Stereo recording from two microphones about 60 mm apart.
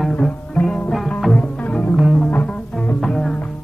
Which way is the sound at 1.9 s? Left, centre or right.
Centre.